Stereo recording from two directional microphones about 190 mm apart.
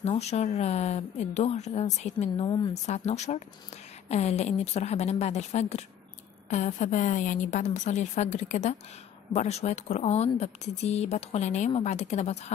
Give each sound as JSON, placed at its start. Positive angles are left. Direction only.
{"t": 0.0, "sound": "speech", "side_deg": 35}
{"t": 2.4, "sound": "speech", "side_deg": 25}
{"t": 2.7, "sound": "speech", "side_deg": 35}